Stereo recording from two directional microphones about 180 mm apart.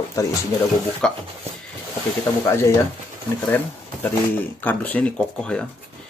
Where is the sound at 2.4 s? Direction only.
15° left (ahead or behind).